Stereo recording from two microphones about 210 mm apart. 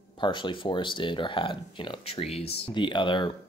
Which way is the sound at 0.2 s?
25° left (ahead or behind).